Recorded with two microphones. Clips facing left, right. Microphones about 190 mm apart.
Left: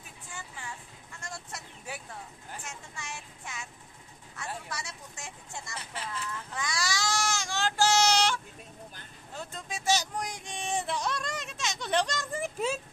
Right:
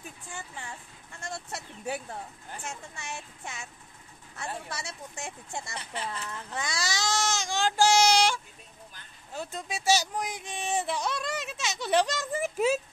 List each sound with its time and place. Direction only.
1.2 s a sound: 30° right (ahead or behind)
3.0 s child singing: 25° right (ahead or behind)
4.4 s speech: 25° right (ahead or behind); by 8.4 s 10° right (ahead or behind)
9.4 s speech: 10° right (ahead or behind)